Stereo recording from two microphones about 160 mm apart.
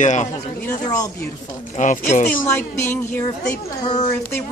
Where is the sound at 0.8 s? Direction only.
20° left (ahead or behind).